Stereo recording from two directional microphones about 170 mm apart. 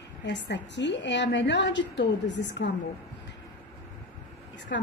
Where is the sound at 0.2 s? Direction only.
90° left.